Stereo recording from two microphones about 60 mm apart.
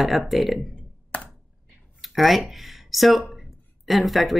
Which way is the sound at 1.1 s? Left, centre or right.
Left.